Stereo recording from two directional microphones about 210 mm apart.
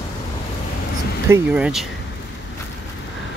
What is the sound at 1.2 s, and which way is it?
Speech, 5° right (ahead or behind).